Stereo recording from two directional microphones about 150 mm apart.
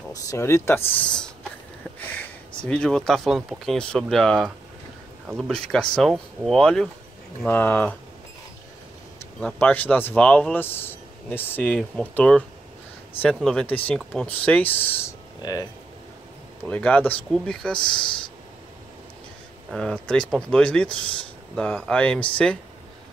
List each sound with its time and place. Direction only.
0.1 s speech: 20° left (ahead or behind)
9.4 s speech: 10° left (ahead or behind)
16.6 s speech: 10° left (ahead or behind)
19.7 s speech: 5° left (ahead or behind)